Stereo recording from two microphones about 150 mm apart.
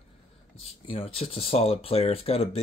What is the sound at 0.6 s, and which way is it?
Speech, 40° left (ahead or behind).